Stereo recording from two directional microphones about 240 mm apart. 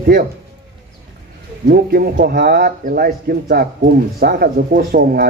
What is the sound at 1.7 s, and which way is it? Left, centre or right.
Speech, right.